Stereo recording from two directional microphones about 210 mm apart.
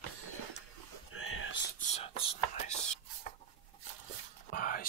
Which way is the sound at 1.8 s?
30° left (ahead or behind).